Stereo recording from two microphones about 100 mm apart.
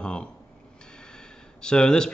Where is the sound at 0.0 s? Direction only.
10° left (ahead or behind).